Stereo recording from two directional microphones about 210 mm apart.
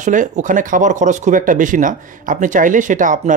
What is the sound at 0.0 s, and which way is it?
Speech, 35° right (ahead or behind).